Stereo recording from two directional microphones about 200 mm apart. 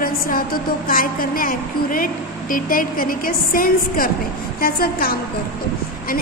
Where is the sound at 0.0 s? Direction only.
45° left (ahead or behind).